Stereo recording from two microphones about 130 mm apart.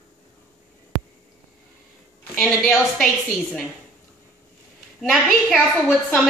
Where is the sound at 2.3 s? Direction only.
5° left (ahead or behind).